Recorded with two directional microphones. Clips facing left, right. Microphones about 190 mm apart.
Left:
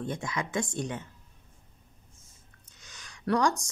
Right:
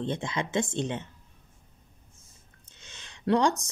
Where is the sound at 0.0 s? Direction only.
25° right (ahead or behind).